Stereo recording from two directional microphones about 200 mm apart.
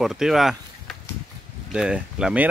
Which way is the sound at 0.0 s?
Centre (ahead or behind).